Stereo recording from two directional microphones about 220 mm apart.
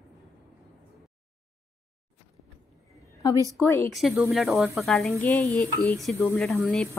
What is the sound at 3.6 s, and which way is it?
A woman's voice, 5° left (ahead or behind).